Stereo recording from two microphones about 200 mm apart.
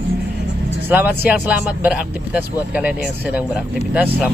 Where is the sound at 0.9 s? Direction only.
10° right (ahead or behind).